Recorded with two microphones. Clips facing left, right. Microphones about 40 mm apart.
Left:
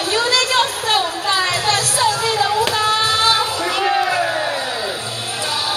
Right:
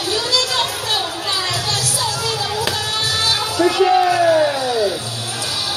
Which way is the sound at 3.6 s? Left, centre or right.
Centre.